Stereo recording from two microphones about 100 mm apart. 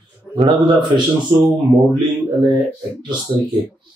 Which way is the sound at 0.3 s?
5° left (ahead or behind).